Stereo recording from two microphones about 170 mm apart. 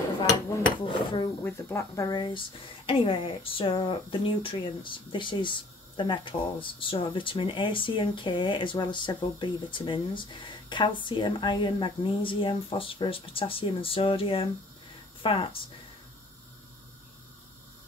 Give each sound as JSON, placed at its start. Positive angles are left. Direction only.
{"t": 0.8, "sound": "speech", "side_deg": 30}
{"t": 1.4, "sound": "speech", "side_deg": 15}